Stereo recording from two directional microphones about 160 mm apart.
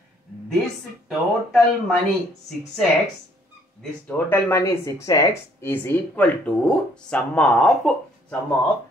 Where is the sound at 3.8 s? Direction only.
10° left (ahead or behind).